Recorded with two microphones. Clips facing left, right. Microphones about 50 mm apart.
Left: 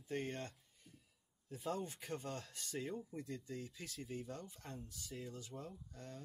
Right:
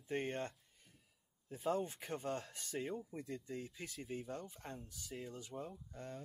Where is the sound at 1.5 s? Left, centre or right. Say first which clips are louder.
Right 4 dB; right.